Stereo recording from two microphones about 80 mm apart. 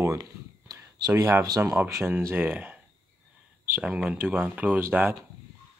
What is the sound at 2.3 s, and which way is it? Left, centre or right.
Speech, centre.